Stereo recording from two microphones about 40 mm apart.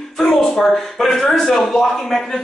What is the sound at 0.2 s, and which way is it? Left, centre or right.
Speech, centre.